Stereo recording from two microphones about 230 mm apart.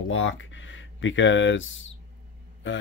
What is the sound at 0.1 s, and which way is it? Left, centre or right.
Speech, left.